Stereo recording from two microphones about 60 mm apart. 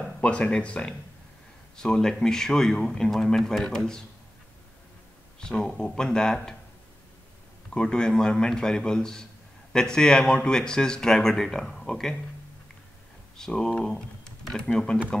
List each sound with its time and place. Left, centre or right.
0.2 s speech: centre
5.4 s speech: centre
7.7 s speech: centre
13.4 s speech: centre